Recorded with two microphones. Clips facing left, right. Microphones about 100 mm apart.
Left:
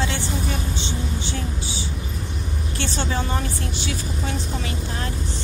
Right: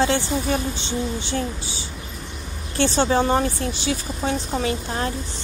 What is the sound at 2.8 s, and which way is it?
A woman's voice, 35° right (ahead or behind).